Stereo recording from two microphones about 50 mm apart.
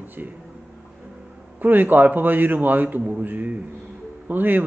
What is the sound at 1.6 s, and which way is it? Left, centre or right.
A man's voice, right.